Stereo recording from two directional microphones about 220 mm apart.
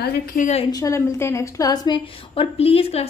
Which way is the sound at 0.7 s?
15° left (ahead or behind).